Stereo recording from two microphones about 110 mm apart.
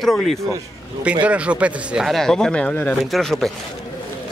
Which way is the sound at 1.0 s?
10° right (ahead or behind).